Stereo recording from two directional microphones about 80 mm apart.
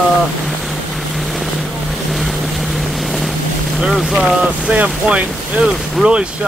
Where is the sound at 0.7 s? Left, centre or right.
Centre.